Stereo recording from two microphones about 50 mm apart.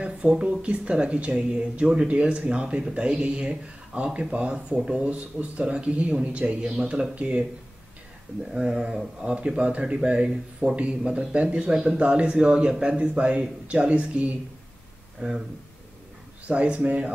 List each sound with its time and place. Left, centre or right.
0.0 s speech: right
5.0 s speech: right
6.6 s speech: centre
10.3 s speech: centre
11.1 s speech: right
15.1 s speech: centre
16.4 s speech: right